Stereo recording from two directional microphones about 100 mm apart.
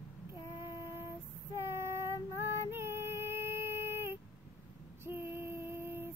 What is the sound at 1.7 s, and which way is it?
Female singing, 25° right (ahead or behind).